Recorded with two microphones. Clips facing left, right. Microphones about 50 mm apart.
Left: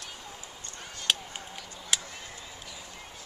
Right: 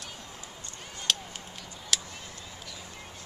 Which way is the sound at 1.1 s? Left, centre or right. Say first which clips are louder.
Left 1 dB; centre.